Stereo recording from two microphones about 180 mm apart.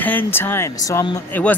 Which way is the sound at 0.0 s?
10° left (ahead or behind).